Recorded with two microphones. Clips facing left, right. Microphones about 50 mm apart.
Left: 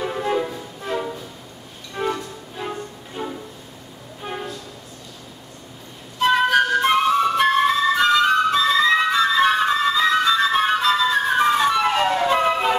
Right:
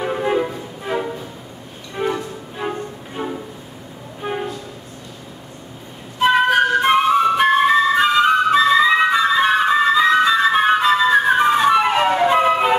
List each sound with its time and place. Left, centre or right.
0.0 s music: centre
4.2 s train: centre
6.1 s flute: centre